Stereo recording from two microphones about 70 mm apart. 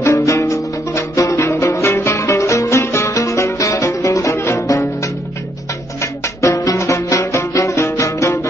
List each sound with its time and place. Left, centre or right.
0.0 s music: left
6.4 s music: left